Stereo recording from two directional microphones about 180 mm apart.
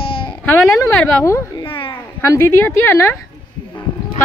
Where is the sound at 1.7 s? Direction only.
30° left (ahead or behind).